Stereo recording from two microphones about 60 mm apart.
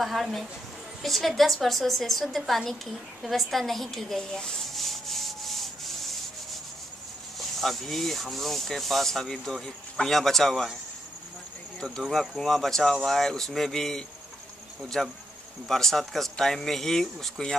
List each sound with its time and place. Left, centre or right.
0.0 s rub: centre
1.0 s a woman's voice: centre
7.3 s rub: centre
12.1 s rub: centre